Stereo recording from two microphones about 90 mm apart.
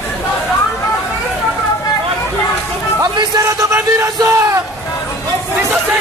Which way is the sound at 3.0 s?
45° right (ahead or behind).